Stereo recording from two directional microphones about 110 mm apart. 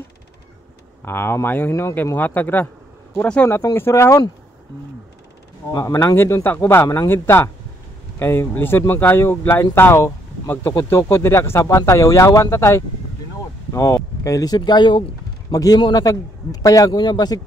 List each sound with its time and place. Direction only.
1.0 s speech: 20° left (ahead or behind)
3.4 s speech: 20° left (ahead or behind)
5.7 s speech: 35° left (ahead or behind)
5.9 s speech: 25° left (ahead or behind)
14.6 s speech: 45° left (ahead or behind)
15.5 s speech: 35° left (ahead or behind)